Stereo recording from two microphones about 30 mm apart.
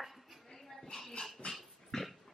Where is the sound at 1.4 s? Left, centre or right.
Left.